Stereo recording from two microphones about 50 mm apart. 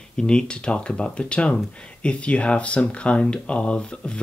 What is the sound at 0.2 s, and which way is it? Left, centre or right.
Speech, centre.